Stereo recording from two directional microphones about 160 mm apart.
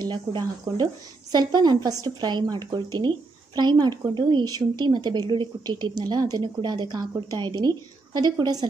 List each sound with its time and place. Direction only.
0.0 s speech: 25° right (ahead or behind)